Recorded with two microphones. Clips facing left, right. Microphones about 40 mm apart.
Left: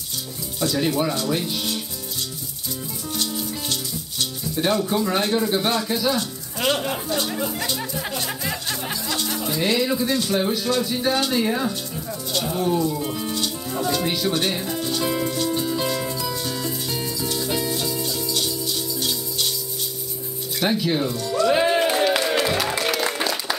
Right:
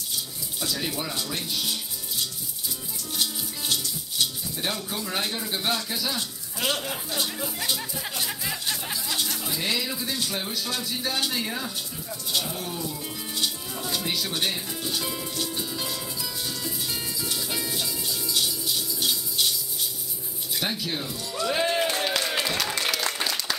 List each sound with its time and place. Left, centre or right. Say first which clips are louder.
0.6 s speech: left 9 dB; centre
4.6 s speech: left 10 dB; centre
7.1 s speech: left 4 dB; centre
7.3 s speech: left 7 dB; centre
7.7 s speech: left 4 dB; centre
13.3 s rattle: left 4 dB; centre
14.0 s speech: left 6 dB; centre
14.7 s music: left 7 dB; centre
18.9 s music: left 2 dB; centre
20.6 s speech: left 9 dB; centre
21.5 s a sound: left 5 dB; centre
22.9 s applause: left 4 dB; centre